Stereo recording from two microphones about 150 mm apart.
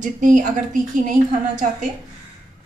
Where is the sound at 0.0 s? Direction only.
55° right (ahead or behind).